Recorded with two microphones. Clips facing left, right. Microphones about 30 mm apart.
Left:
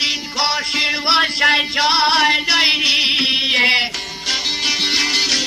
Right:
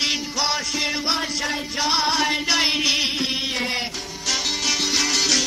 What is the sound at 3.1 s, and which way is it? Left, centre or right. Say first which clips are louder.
Music: left 8 dB; left.